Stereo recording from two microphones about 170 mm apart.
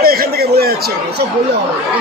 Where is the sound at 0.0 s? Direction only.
65° right (ahead or behind).